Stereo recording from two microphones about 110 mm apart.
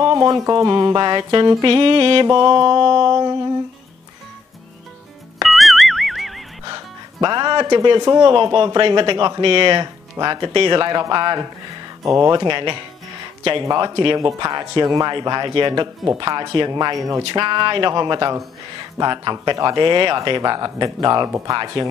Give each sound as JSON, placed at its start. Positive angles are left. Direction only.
{"t": 0.0, "sound": "speech", "side_deg": -35}
{"t": 2.3, "sound": "speech", "side_deg": -40}
{"t": 3.1, "sound": "speech", "side_deg": -35}
{"t": 5.4, "sound": "music", "side_deg": 0}
{"t": 6.6, "sound": "music", "side_deg": -40}
{"t": 8.1, "sound": "speech", "side_deg": -35}
{"t": 8.4, "sound": "speech", "side_deg": -45}
{"t": 10.1, "sound": "speech", "side_deg": -35}
{"t": 12.4, "sound": "speech", "side_deg": -45}
{"t": 13.7, "sound": "speech", "side_deg": -35}
{"t": 21.3, "sound": "speech", "side_deg": -30}